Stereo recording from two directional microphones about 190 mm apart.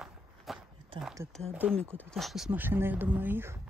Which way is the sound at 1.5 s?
5° right (ahead or behind).